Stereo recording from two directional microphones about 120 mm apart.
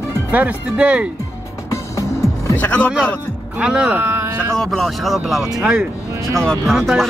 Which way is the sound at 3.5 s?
10° right (ahead or behind).